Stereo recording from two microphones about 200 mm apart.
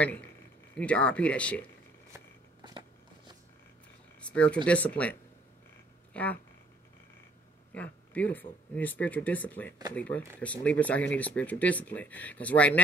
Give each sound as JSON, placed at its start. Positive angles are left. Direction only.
{"t": 0.7, "sound": "speech", "side_deg": 5}
{"t": 2.1, "sound": "a sound", "side_deg": -20}
{"t": 4.2, "sound": "a sound", "side_deg": 5}
{"t": 4.6, "sound": "speech", "side_deg": 5}
{"t": 6.1, "sound": "speech", "side_deg": 5}
{"t": 7.7, "sound": "speech", "side_deg": 5}